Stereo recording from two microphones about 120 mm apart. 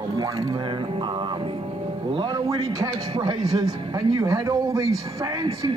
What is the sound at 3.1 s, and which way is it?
Speech, 40° right (ahead or behind).